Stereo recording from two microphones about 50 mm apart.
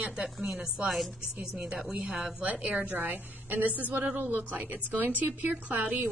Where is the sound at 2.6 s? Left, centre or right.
Right.